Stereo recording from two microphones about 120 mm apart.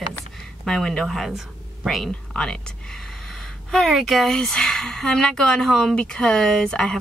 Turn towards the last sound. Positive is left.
turn(degrees=5)  # may be behind; listen again after turning